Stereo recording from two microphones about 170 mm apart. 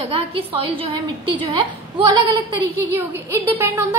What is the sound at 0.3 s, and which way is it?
A woman's voice, 30° right (ahead or behind).